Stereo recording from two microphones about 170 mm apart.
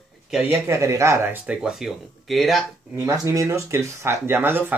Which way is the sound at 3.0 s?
15° right (ahead or behind).